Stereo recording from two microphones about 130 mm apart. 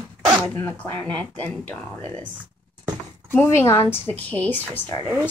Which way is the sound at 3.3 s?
20° left (ahead or behind).